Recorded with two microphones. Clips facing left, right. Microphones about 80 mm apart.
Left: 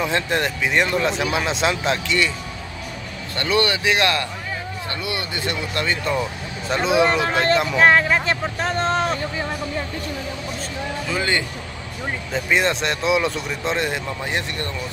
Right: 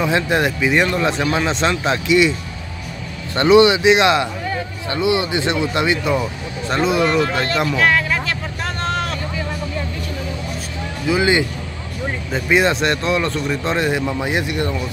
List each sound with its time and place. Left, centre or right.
0.0 s speech: centre
2.0 s speech: centre
3.3 s speech: centre
6.7 s speech: centre
7.7 s a sound: left
11.1 s speech: centre